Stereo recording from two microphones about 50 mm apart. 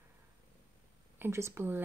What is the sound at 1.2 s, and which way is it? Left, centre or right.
Speech, right.